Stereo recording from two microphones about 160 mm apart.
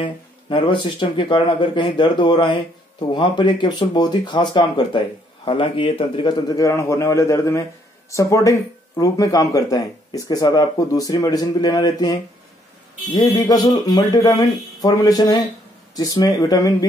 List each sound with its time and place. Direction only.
0.0 s speech: 30° left (ahead or behind)
6.5 s speech: 20° left (ahead or behind)